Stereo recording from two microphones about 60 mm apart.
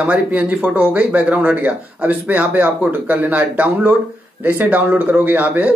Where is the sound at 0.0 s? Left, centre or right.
Right.